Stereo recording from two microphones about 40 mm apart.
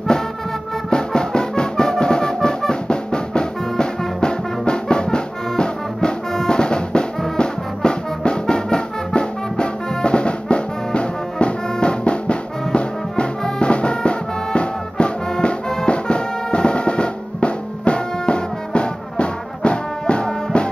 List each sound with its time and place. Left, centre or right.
0.8 s music: centre
15.7 s drum: left